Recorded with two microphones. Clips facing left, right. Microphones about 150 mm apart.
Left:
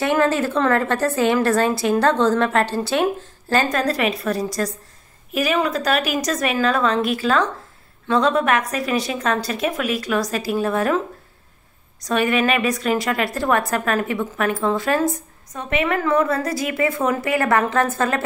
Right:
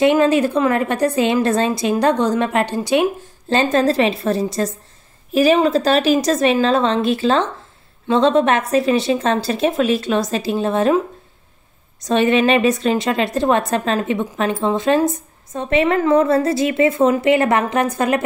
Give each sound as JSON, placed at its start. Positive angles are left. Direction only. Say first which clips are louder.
{"t": 0.0, "sound": "a woman's voice", "louder": "right 5 dB", "side_deg": -15}
{"t": 12.1, "sound": "a woman's voice", "louder": "right 4 dB", "side_deg": -25}